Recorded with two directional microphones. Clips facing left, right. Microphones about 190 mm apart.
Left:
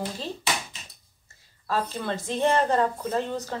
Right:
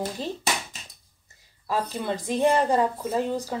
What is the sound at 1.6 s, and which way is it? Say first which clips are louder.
Speech: right 1 dB; 10° right (ahead or behind).